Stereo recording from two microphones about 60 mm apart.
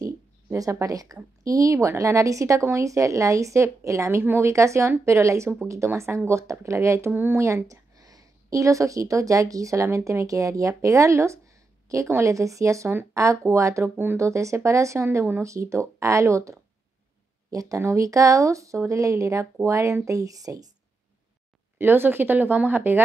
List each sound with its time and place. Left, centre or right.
0.0 s a woman's voice: right
4.2 s speech: right
7.1 s speech: right
7.3 s a woman's voice: right
13.8 s speech: right
14.1 s a woman's voice: right
17.5 s speech: right
17.7 s a woman's voice: right
21.7 s speech: right